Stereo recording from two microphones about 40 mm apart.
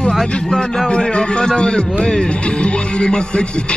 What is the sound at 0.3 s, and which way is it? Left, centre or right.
A man's voice, left.